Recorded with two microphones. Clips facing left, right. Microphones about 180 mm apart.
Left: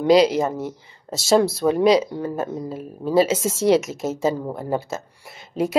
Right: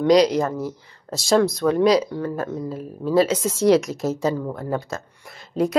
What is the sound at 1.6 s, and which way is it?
Speech, 20° left (ahead or behind).